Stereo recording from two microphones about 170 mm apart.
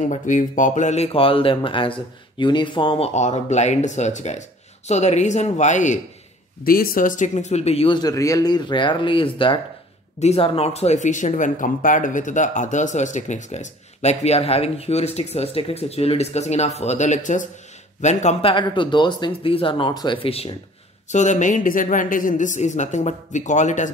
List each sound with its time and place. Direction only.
0.0 s speech: 45° left (ahead or behind)
6.6 s a woman's voice: 60° left (ahead or behind); by 18.5 s 40° left (ahead or behind)
18.5 s speech: 30° left (ahead or behind)
21.1 s a woman's voice: 45° left (ahead or behind)